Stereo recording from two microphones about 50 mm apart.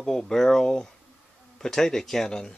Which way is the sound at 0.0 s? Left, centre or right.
Centre.